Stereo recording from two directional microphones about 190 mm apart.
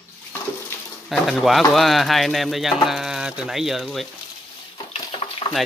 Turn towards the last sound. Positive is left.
turn(degrees=30)  # may be behind; listen again after turning